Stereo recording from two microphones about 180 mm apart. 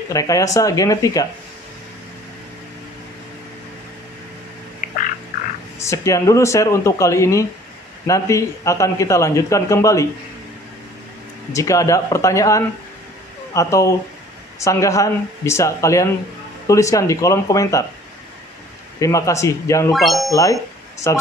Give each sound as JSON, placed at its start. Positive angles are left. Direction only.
{"t": 0.1, "sound": "speech", "side_deg": 20}
{"t": 5.8, "sound": "speech", "side_deg": 15}
{"t": 11.5, "sound": "speech", "side_deg": 15}
{"t": 18.9, "sound": "speech", "side_deg": 15}
{"t": 19.9, "sound": "speech", "side_deg": 0}
{"t": 20.2, "sound": "speech", "side_deg": 20}